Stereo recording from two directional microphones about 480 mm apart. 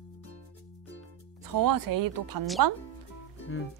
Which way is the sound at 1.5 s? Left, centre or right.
Right.